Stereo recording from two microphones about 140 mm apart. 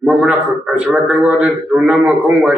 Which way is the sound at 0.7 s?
10° right (ahead or behind).